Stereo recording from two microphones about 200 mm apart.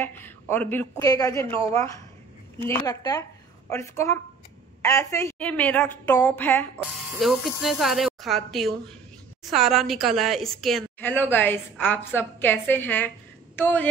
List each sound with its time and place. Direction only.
0.0 s a woman's voice: 10° left (ahead or behind)
2.6 s a woman's voice: 15° left (ahead or behind)